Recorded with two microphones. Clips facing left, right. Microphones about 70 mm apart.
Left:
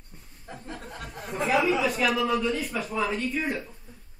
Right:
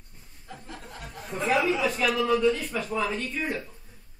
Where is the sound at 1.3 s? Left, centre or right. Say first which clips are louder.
Left 1 dB; centre.